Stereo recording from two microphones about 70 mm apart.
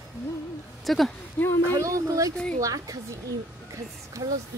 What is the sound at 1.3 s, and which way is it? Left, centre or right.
Speech, left.